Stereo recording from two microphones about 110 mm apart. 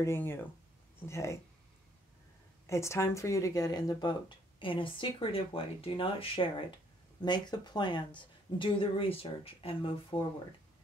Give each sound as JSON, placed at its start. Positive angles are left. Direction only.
{"t": 0.0, "sound": "speech", "side_deg": 20}
{"t": 2.6, "sound": "speech", "side_deg": 25}
{"t": 4.6, "sound": "a woman's voice", "side_deg": 50}
{"t": 7.2, "sound": "a woman's voice", "side_deg": 40}